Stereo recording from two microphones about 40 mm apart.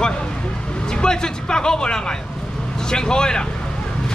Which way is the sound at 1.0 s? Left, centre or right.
Centre.